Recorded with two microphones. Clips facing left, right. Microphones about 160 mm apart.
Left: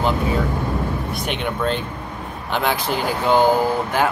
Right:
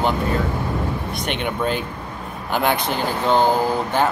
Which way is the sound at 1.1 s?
5° left (ahead or behind).